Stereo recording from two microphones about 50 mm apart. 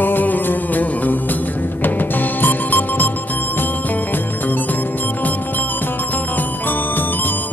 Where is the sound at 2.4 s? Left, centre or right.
Left.